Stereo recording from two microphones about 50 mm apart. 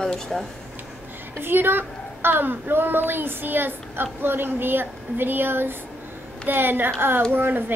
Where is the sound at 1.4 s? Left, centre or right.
Right.